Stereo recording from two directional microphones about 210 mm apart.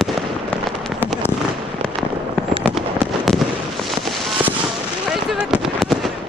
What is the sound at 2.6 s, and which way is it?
Fireworks, centre (ahead or behind).